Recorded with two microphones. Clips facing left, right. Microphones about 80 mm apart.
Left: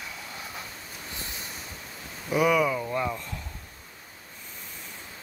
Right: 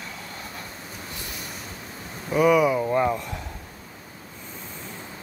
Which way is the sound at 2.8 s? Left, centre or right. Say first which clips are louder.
Right 7 dB; right.